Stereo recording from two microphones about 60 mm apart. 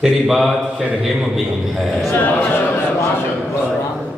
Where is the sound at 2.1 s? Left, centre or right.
Left.